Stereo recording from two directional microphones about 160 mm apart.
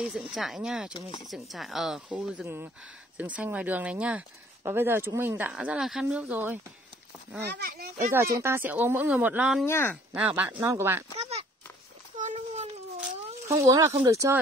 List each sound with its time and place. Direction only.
0.0 s speech: centre (ahead or behind)
7.4 s a child's voice: 85° right
8.1 s speech: 15° right (ahead or behind)
9.7 s speech: 15° left (ahead or behind)
10.1 s speech: 10° right (ahead or behind)
11.1 s a sound: 40° right (ahead or behind)
13.5 s speech: 20° right (ahead or behind)